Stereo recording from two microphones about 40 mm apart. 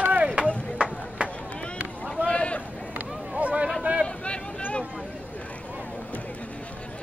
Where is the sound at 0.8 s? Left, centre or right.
Right.